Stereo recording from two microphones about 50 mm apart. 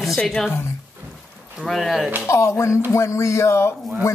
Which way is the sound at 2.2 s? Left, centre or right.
Left.